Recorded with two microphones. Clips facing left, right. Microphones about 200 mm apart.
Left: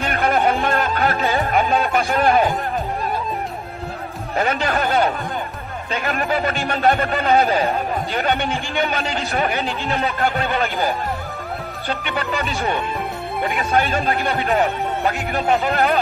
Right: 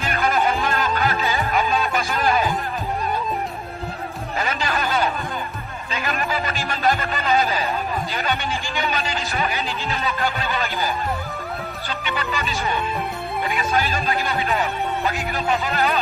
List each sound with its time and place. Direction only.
0.0 s music: 55° left (ahead or behind)
4.4 s a man's voice: 55° left (ahead or behind)
13.6 s a man's voice: 55° left (ahead or behind)